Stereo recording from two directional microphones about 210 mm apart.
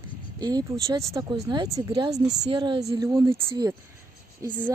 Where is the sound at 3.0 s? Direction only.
15° right (ahead or behind).